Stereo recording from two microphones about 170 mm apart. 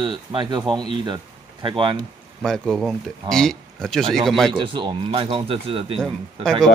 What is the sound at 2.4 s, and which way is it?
Speech, centre (ahead or behind).